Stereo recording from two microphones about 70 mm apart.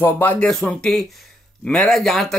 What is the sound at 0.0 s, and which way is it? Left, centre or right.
Speech, left.